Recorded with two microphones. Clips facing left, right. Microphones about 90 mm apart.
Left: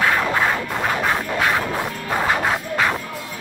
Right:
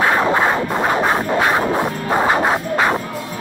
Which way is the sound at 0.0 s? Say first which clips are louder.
Right 4 dB; 25° right (ahead or behind).